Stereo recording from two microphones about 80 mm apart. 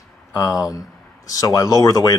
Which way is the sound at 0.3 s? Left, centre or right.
Left.